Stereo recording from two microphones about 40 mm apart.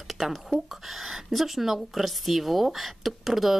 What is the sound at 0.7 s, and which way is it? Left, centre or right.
Speech, centre.